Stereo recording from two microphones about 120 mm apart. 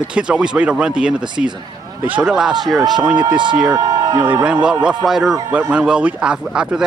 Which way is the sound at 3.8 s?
30° right (ahead or behind).